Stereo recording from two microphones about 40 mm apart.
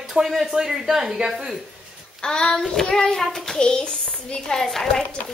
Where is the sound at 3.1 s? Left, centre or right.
Centre.